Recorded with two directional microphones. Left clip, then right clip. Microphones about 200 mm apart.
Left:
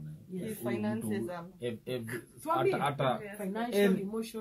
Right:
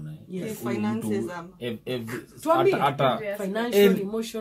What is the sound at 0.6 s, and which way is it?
Speech, 35° left (ahead or behind).